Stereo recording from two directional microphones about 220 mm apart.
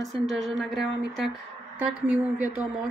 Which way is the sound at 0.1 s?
Centre (ahead or behind).